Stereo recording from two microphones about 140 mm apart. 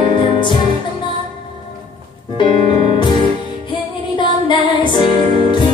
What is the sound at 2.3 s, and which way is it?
Music, 35° left (ahead or behind).